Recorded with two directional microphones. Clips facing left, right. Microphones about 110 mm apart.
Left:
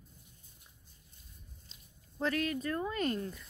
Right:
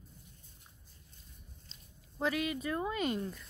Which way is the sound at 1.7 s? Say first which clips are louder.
Right 2 dB; 10° left (ahead or behind).